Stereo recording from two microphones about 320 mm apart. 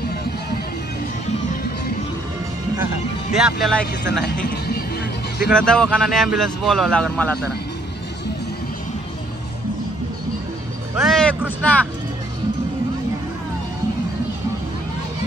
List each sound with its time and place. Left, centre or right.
3.3 s speech: centre
4.2 s speech: left
5.5 s speech: centre
11.0 s speech: centre